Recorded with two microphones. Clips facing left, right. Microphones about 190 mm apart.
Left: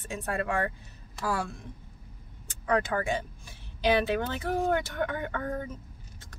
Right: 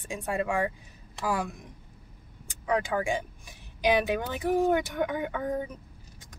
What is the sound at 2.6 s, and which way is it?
Speech, 10° right (ahead or behind).